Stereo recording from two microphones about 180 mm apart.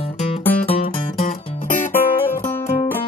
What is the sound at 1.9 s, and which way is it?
Music, 10° left (ahead or behind).